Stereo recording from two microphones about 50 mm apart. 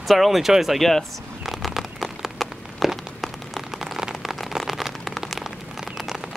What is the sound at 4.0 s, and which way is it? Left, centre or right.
Rain on surface, centre.